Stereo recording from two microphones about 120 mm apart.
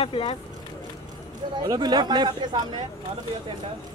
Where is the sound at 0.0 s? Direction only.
50° left (ahead or behind).